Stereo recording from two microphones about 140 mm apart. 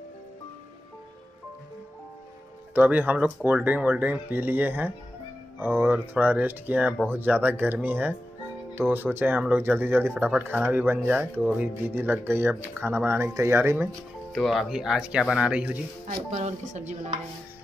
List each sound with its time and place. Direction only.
2.7 s speech: 10° right (ahead or behind)
14.3 s speech: centre (ahead or behind)
16.3 s speech: 55° right (ahead or behind)